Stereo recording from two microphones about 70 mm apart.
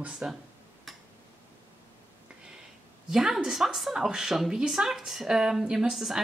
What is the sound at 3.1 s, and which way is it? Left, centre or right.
A woman's voice, centre.